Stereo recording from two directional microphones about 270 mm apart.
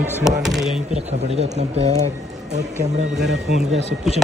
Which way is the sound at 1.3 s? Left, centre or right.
Right.